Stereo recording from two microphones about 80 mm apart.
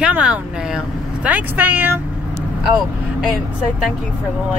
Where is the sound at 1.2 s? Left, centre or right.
Right.